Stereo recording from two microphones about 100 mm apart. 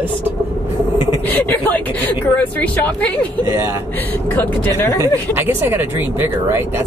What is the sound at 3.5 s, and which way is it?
Speech, 30° right (ahead or behind).